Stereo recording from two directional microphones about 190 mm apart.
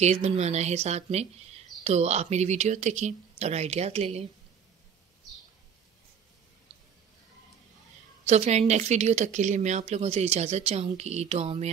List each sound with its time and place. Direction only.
0.0 s speech: 35° right (ahead or behind)
8.3 s speech: 35° right (ahead or behind)